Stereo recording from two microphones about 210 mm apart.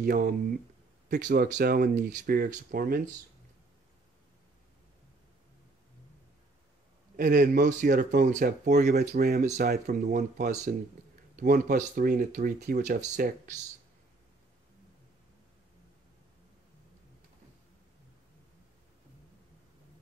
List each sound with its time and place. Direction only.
0.0 s speech: 45° right (ahead or behind)
7.2 s speech: 40° right (ahead or behind)